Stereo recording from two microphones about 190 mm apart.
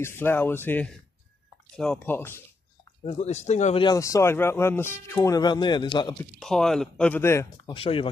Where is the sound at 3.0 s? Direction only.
35° left (ahead or behind).